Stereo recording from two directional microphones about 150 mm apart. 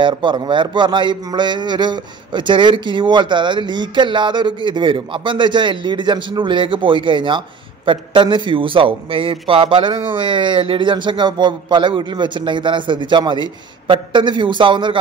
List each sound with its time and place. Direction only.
0.0 s a man's voice: 30° right (ahead or behind)